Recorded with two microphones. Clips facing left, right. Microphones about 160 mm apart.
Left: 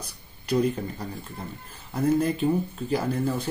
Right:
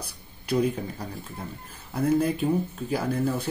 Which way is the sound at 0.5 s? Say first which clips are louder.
Left 1 dB; 5° right (ahead or behind).